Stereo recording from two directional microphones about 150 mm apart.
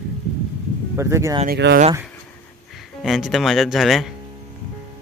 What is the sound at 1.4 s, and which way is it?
Speech, 90° right.